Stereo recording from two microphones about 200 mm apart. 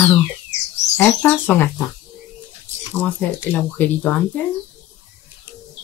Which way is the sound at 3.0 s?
5° left (ahead or behind).